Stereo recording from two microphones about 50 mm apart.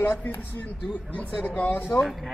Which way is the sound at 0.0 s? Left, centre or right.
Left.